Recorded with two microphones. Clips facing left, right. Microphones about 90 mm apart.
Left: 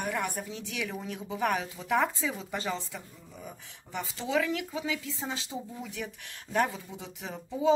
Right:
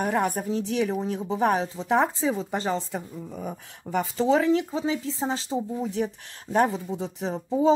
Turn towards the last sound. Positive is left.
turn(degrees=-35)  # may be behind; listen again after turning